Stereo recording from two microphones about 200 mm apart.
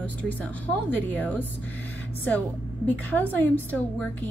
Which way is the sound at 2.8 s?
10° left (ahead or behind).